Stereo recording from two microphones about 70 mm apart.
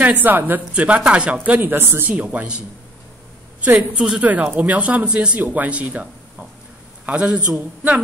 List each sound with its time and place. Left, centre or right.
0.0 s speech: right
2.0 s speech: centre
4.2 s speech: right
7.1 s speech: centre